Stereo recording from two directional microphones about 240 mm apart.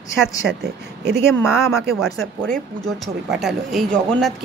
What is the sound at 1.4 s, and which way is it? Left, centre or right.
Speech, centre.